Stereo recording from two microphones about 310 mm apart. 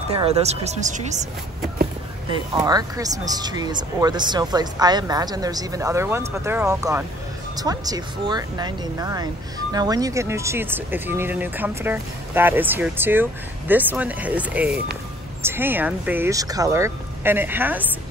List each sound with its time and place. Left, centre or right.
0.1 s speech: centre
2.3 s speech: centre